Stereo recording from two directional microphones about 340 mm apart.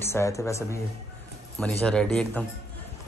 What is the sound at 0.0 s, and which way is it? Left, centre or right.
A man's voice, centre.